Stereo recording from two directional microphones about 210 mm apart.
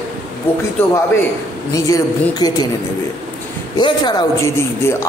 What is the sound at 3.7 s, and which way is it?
Speech, 20° left (ahead or behind).